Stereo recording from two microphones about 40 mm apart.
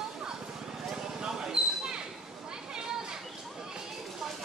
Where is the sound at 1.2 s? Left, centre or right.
Centre.